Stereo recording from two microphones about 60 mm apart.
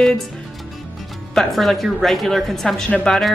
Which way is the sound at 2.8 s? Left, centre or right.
Centre.